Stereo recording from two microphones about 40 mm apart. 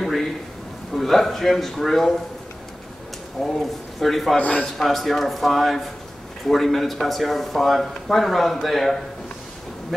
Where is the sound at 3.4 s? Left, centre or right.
Centre.